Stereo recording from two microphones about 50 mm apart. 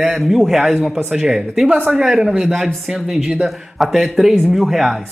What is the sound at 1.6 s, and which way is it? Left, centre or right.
Speech, right.